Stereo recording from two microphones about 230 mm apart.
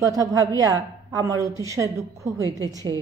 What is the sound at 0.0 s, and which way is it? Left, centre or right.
A woman's voice, centre.